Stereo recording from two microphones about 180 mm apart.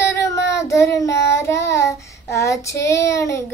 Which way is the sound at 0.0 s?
15° left (ahead or behind).